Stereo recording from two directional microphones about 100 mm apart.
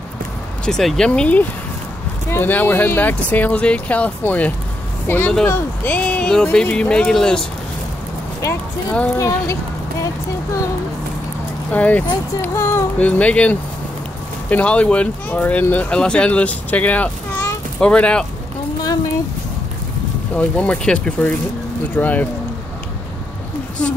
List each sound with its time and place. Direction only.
0.7 s speech: 5° left (ahead or behind)
9.1 s speech: 30° left (ahead or behind)
11.7 s speech: 15° left (ahead or behind)
12.5 s speech: 25° left (ahead or behind)
13.0 s speech: 15° left (ahead or behind)
20.3 s speech: 10° left (ahead or behind)